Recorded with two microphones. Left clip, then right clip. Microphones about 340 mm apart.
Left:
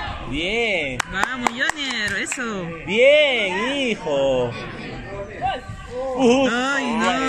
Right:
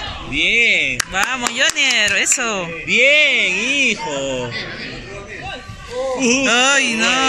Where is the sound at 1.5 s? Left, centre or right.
Centre.